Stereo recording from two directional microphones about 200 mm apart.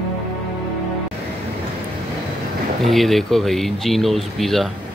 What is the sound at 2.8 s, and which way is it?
Speech, centre (ahead or behind).